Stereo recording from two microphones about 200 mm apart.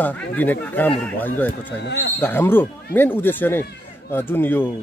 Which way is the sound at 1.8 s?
60° left (ahead or behind).